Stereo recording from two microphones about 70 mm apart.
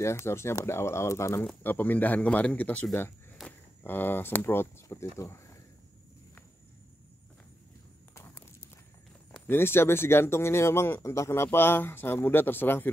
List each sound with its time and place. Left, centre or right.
0.0 s speech: left
1.6 s speech: left
4.8 s speech: left
8.1 s walk: left
9.5 s speech: left